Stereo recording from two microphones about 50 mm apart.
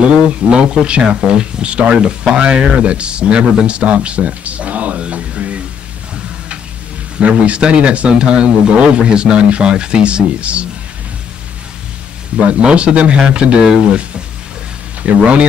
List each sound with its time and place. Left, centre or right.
0.3 s speech: right
3.6 s music: right
7.2 s speech: right
12.4 s speech: right